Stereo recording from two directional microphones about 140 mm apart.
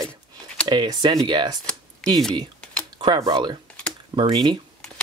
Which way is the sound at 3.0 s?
30° right (ahead or behind).